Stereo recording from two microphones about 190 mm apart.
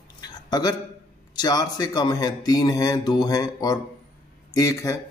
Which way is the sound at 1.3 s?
20° left (ahead or behind).